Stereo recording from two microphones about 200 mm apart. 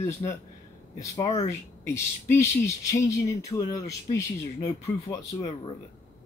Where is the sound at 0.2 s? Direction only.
15° left (ahead or behind).